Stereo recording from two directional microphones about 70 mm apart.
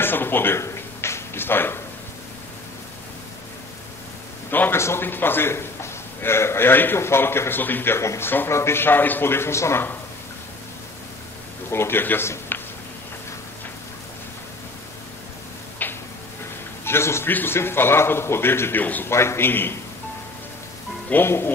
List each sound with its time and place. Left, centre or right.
0.0 s speech: left
0.6 s a sound: left
4.5 s a man's voice: left
11.7 s a man's voice: left
12.3 s a sound: left
15.8 s tick-tock: left
16.8 s a man's voice: left
19.0 s a man's voice: left
21.1 s a man's voice: left